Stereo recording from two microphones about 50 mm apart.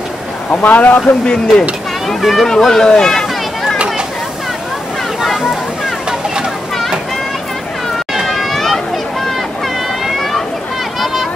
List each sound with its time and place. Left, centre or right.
0.5 s a man's voice: left
1.2 s speech: centre
2.0 s speech: centre
5.2 s a sound: centre
8.3 s run: centre
10.0 s a sound: centre